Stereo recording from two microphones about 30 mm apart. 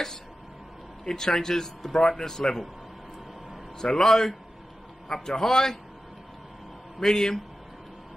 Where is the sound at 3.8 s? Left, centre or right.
Left.